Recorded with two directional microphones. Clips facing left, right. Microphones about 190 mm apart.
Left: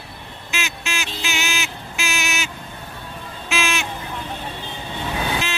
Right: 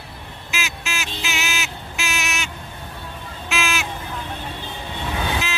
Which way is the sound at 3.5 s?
Centre (ahead or behind).